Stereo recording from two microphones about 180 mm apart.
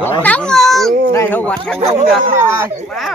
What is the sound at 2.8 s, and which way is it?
Speech, centre (ahead or behind).